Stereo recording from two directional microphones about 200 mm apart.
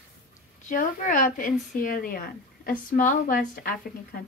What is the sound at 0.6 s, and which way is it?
Speech, 40° left (ahead or behind).